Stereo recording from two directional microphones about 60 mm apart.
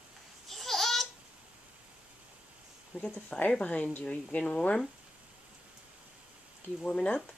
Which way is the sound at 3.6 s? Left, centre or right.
Left.